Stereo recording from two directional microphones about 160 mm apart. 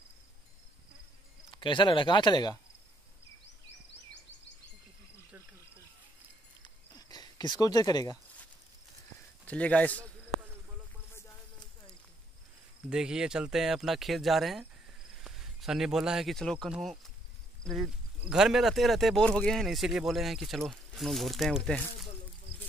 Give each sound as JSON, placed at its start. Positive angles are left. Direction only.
{"t": 1.5, "sound": "speech", "side_deg": 30}
{"t": 6.6, "sound": "a sound", "side_deg": 25}
{"t": 9.5, "sound": "speech", "side_deg": 10}
{"t": 12.9, "sound": "speech", "side_deg": -5}